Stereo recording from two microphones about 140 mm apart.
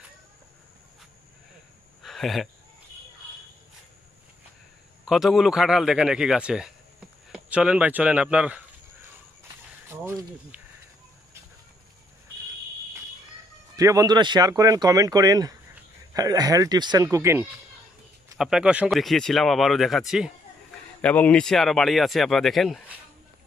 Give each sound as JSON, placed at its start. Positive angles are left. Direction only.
{"t": 2.0, "sound": "speech", "side_deg": 0}
{"t": 5.0, "sound": "speech", "side_deg": -5}
{"t": 13.7, "sound": "speech", "side_deg": -25}
{"t": 18.4, "sound": "speech", "side_deg": -5}
{"t": 21.0, "sound": "speech", "side_deg": 10}